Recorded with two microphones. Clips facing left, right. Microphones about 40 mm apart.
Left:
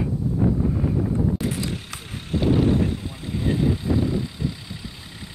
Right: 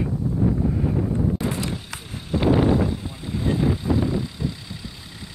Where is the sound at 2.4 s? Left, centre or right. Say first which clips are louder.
Right 1 dB; right.